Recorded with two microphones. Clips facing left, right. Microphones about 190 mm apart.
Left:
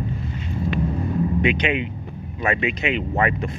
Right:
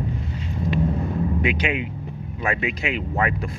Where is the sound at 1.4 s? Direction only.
5° right (ahead or behind).